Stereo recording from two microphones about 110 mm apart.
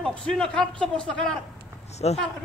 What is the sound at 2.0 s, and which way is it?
Speech, 65° left (ahead or behind).